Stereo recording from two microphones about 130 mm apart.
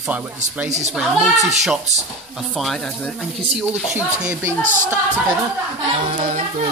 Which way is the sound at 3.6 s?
10° right (ahead or behind).